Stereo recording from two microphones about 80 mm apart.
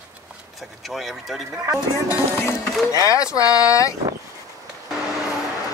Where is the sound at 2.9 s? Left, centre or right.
Left.